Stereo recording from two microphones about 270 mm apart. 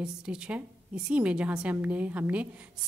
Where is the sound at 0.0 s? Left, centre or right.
Centre.